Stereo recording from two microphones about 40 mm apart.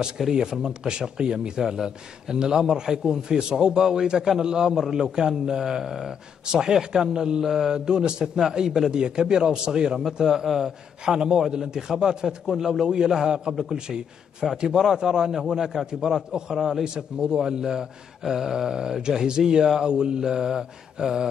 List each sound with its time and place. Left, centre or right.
0.3 s a man's voice: centre
10.4 s speech: centre
11.1 s a man's voice: centre